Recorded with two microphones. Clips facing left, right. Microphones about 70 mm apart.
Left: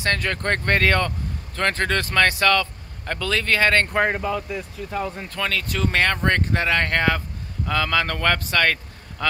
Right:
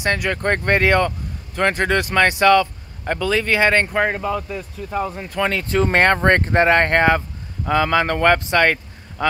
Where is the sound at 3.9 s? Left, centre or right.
Centre.